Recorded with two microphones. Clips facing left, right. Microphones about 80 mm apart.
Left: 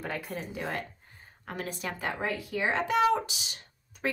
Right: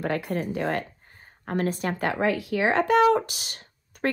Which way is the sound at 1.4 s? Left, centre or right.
Right.